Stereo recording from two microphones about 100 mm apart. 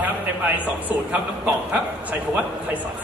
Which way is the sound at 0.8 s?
15° right (ahead or behind).